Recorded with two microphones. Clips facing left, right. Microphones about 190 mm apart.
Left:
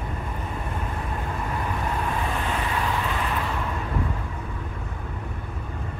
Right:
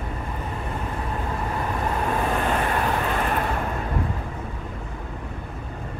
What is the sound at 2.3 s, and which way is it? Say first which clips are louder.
Vehicle: right 4 dB; 55° right (ahead or behind).